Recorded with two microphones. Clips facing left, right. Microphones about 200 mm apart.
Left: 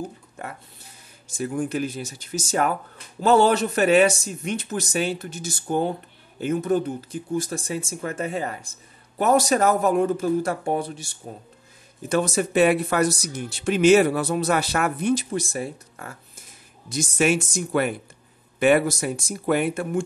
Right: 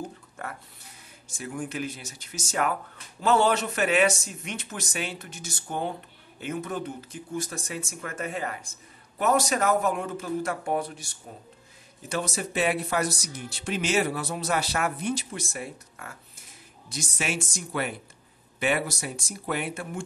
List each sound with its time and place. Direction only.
1.4 s speech: 40° left (ahead or behind)
12.1 s speech: 55° left (ahead or behind)
15.3 s speech: 35° left (ahead or behind)
16.9 s speech: 50° left (ahead or behind)